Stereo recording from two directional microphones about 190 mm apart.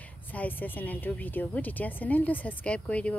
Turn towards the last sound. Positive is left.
turn(degrees=5)  # may be behind; listen again after turning